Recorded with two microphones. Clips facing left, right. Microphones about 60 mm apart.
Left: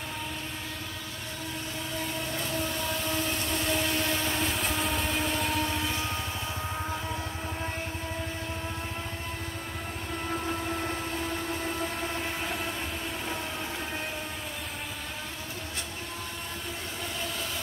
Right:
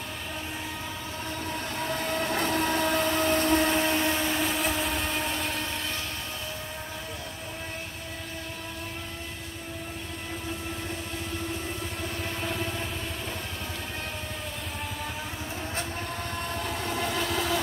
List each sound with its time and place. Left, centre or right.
1.9 s vehicle: right
3.9 s a sound: centre
4.4 s vehicle: centre
16.9 s train: right